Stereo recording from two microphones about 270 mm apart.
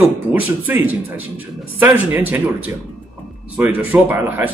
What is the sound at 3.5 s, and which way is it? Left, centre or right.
Speech, centre.